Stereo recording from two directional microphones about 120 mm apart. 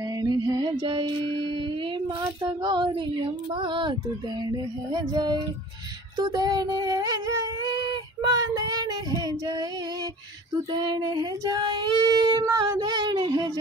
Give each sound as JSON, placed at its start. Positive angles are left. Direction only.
{"t": 0.2, "sound": "music", "side_deg": -35}
{"t": 2.4, "sound": "child singing", "side_deg": -40}
{"t": 4.9, "sound": "child singing", "side_deg": -35}
{"t": 6.1, "sound": "a sound", "side_deg": -35}
{"t": 10.7, "sound": "child singing", "side_deg": -35}